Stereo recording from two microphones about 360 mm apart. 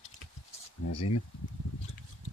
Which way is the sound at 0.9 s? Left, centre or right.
Left.